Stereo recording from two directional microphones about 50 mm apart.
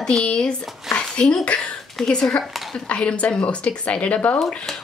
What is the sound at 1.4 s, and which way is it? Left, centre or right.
Speech, left.